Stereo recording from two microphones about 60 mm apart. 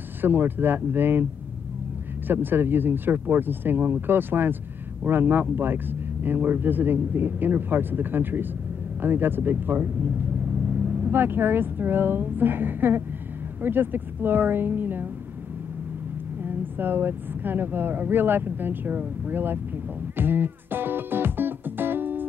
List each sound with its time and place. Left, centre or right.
0.2 s speech: right
2.2 s speech: right
16.4 s speech: right
20.2 s music: right